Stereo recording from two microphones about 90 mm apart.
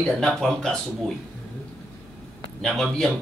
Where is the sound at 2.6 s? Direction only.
5° left (ahead or behind).